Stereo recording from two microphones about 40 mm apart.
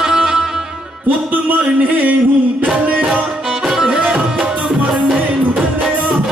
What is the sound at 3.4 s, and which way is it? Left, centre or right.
Music, centre.